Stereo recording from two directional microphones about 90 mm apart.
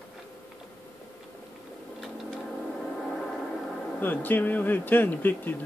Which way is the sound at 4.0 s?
20° left (ahead or behind).